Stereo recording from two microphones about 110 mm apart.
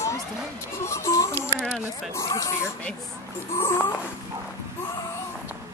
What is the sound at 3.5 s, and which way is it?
Speech, 20° left (ahead or behind).